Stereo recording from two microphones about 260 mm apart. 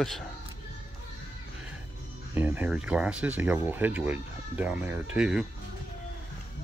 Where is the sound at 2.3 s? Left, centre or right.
Centre.